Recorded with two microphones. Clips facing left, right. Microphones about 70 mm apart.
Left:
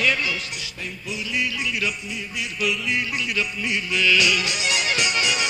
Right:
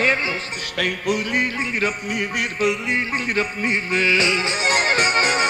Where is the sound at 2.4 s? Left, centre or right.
Right.